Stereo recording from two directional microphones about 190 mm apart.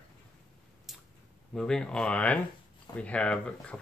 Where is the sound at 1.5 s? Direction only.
5° left (ahead or behind).